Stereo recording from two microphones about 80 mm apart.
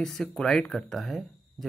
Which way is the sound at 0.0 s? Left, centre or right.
Centre.